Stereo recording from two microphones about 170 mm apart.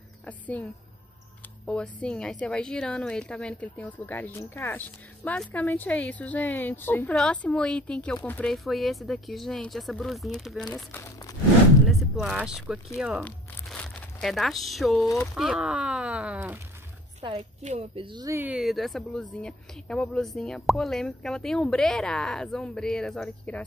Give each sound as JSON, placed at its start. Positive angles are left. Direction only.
{"t": 0.2, "sound": "a woman's voice", "side_deg": 10}
{"t": 1.7, "sound": "a woman's voice", "side_deg": 5}
{"t": 11.9, "sound": "a sound", "side_deg": 0}
{"t": 12.6, "sound": "speech", "side_deg": -5}
{"t": 13.2, "sound": "crumpling", "side_deg": 10}
{"t": 15.3, "sound": "speech", "side_deg": -5}
{"t": 17.2, "sound": "speech", "side_deg": -35}
{"t": 18.3, "sound": "speech", "side_deg": -10}